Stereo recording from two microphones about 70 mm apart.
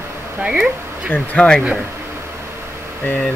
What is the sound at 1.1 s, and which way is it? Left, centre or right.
Speech, left.